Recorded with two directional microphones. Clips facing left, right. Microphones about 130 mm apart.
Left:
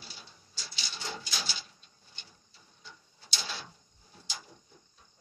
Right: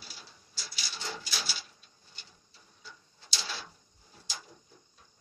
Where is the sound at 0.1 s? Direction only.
5° right (ahead or behind).